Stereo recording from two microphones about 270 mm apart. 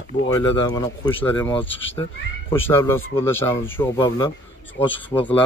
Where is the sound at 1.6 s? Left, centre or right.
Left.